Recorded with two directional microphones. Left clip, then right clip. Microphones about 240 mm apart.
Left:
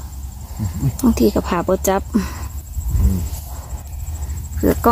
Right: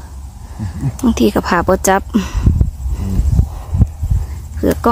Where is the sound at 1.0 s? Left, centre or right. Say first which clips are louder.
Right 2 dB; centre.